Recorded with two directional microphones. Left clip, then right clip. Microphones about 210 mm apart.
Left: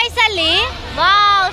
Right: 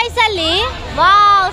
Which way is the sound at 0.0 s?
5° right (ahead or behind).